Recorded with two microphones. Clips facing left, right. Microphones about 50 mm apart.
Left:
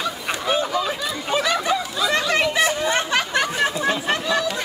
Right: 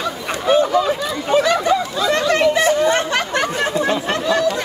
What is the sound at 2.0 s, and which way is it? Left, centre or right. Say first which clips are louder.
Chatter: right 4 dB; centre.